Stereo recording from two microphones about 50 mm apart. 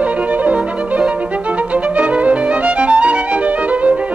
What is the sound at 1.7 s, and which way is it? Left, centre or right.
Music, right.